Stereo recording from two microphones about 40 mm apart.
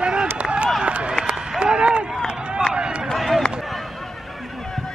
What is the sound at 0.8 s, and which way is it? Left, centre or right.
Run, right.